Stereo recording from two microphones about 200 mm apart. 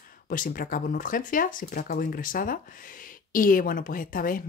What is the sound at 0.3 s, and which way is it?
Speech, 45° left (ahead or behind).